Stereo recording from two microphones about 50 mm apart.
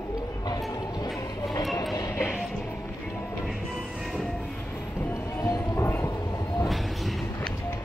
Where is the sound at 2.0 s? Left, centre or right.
Left.